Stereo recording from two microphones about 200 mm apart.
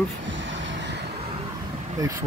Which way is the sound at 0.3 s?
65° right (ahead or behind).